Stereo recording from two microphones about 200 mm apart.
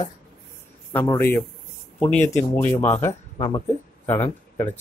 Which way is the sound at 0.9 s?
10° left (ahead or behind).